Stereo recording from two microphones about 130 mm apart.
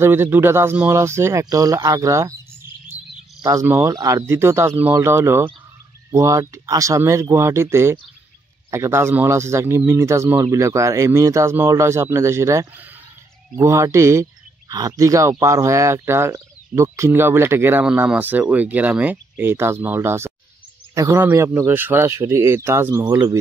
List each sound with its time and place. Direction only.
0.0 s speech: 20° right (ahead or behind)
23.0 s speech: 30° right (ahead or behind)